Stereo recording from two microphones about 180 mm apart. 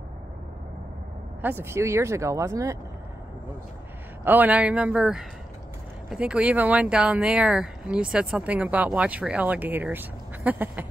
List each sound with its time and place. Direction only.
1.4 s speech: 10° right (ahead or behind)
4.2 s speech: 10° right (ahead or behind)